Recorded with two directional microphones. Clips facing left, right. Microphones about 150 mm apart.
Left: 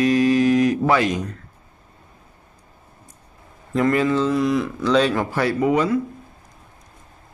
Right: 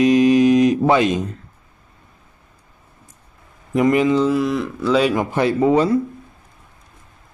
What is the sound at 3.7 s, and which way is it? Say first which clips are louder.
Speech: right 3 dB; 15° right (ahead or behind).